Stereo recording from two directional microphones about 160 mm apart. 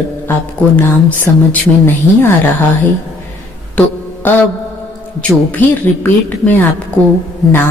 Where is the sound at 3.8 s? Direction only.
10° left (ahead or behind).